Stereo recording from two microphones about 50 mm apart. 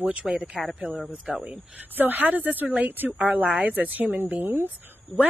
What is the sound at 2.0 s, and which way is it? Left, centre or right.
A woman's voice, right.